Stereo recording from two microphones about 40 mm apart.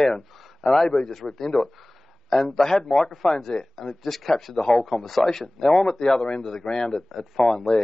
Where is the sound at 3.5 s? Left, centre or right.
Left.